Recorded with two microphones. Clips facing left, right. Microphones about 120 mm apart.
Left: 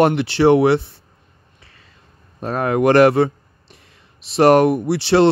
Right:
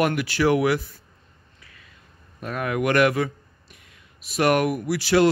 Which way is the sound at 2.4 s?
30° left (ahead or behind).